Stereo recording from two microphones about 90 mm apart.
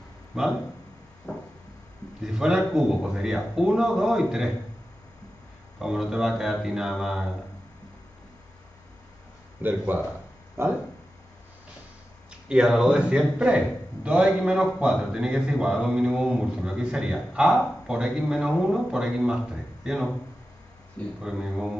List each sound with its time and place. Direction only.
0.3 s a man's voice: 5° right (ahead or behind)
1.3 s a sound: 10° left (ahead or behind)
2.2 s a man's voice: 5° right (ahead or behind)
5.8 s speech: 5° right (ahead or behind)
9.6 s speech: 20° right (ahead or behind)
12.3 s a man's voice: 10° right (ahead or behind)
21.2 s speech: 5° right (ahead or behind)